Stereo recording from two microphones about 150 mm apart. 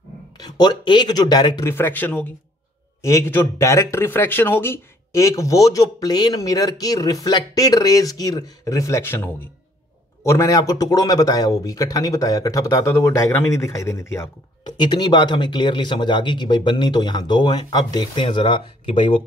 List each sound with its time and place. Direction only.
0.4 s speech: 30° left (ahead or behind)
1.7 s speech: 15° left (ahead or behind)
14.8 s speech: 30° left (ahead or behind)